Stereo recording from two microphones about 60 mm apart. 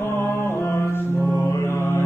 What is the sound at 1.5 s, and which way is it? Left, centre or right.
Music, left.